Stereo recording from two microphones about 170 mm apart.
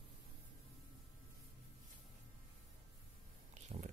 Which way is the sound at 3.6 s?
45° right (ahead or behind).